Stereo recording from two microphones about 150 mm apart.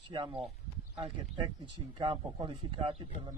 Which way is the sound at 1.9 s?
35° right (ahead or behind).